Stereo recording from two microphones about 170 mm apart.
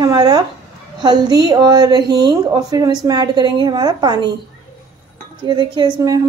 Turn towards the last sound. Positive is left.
turn(degrees=-20)  # may be behind; listen again after turning